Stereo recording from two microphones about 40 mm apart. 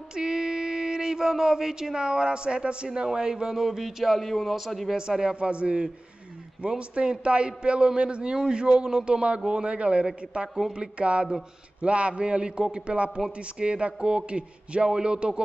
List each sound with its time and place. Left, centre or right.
0.1 s speech: centre
3.5 s a man's voice: centre
4.9 s a man's voice: centre